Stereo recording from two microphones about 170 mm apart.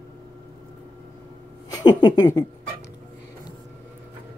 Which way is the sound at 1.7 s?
25° left (ahead or behind).